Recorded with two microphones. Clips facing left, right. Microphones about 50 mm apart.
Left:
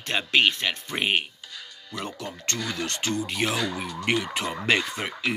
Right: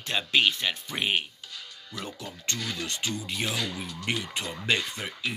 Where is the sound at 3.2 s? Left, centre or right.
Left.